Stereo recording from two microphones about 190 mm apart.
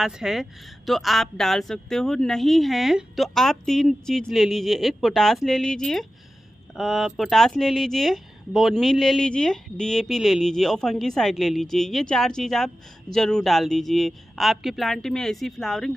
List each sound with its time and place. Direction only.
0.0 s speech: centre (ahead or behind)